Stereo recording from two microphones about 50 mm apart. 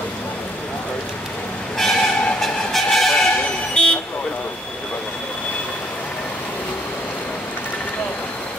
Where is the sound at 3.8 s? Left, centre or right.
Centre.